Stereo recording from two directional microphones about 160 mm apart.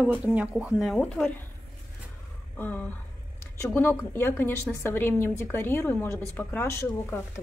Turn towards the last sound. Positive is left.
turn(degrees=15)  # may be behind; listen again after turning